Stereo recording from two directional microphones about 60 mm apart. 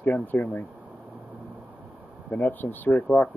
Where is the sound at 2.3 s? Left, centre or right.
Left.